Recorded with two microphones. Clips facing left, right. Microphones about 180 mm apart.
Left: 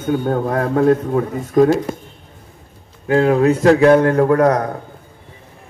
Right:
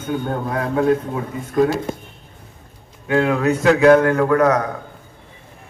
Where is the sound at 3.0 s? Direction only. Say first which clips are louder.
Left 4 dB; 35° left (ahead or behind).